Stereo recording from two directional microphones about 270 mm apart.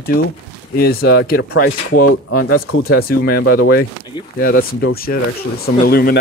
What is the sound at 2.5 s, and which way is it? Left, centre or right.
Speech, left.